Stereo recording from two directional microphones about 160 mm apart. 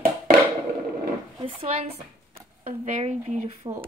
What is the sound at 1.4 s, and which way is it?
Speech, 35° right (ahead or behind).